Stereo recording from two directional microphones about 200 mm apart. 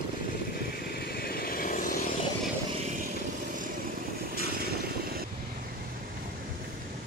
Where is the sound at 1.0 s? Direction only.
50° left (ahead or behind).